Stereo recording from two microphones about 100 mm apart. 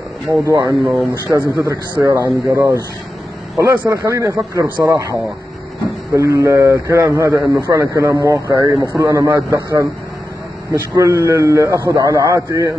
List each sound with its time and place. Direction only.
0.5 s a man's voice: 35° right (ahead or behind)